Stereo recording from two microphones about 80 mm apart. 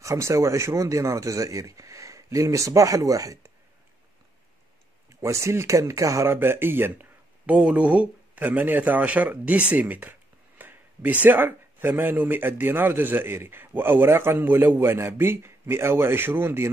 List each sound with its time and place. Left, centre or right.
0.0 s speech: right
5.2 s speech: right
7.4 s speech: centre